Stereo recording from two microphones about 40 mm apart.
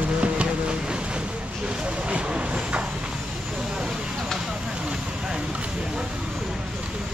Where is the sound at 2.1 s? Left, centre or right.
Right.